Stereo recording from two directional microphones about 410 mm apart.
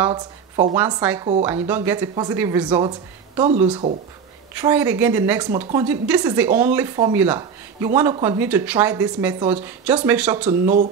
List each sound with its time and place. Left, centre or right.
0.0 s a woman's voice: centre
10.6 s speech: centre